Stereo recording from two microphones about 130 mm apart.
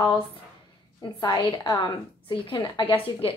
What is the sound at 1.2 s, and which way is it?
A woman's voice, 30° left (ahead or behind).